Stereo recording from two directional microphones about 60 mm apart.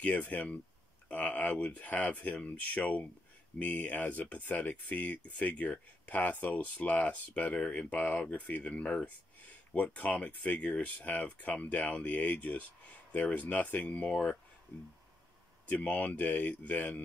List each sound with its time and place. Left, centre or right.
0.0 s speech: left
15.7 s speech: left